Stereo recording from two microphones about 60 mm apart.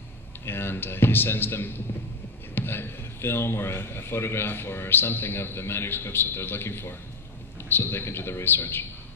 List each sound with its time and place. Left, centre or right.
0.5 s a man's voice: left